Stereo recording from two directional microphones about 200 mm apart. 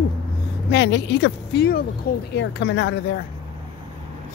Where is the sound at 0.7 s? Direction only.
60° left (ahead or behind).